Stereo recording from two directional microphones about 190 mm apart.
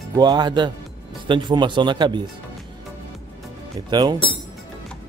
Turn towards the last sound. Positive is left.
turn(degrees=-20)  # may be behind; listen again after turning